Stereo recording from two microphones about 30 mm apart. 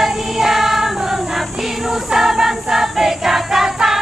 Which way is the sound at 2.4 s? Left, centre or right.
Centre.